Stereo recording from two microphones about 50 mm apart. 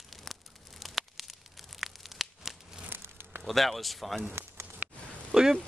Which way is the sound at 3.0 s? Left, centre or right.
Right.